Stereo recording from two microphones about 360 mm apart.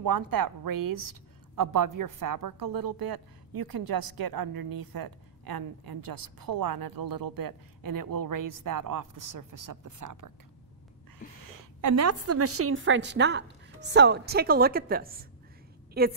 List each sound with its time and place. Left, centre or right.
0.0 s a woman's voice: right
11.5 s a woman's voice: right